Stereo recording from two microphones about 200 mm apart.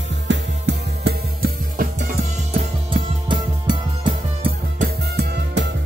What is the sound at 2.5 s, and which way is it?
Music, 25° right (ahead or behind).